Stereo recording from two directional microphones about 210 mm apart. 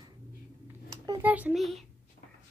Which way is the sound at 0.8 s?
20° right (ahead or behind).